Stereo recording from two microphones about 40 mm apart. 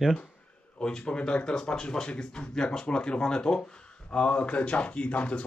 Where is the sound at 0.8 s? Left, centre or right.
Left.